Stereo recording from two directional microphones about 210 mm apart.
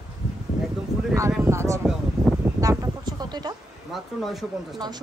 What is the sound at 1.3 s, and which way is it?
Speech, 10° right (ahead or behind).